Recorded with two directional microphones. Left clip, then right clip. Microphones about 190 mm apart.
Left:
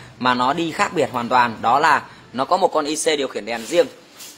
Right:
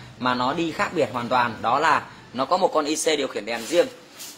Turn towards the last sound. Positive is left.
turn(degrees=30)  # may be behind; listen again after turning